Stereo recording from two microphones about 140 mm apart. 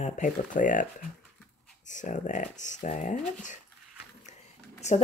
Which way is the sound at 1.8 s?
65° left (ahead or behind).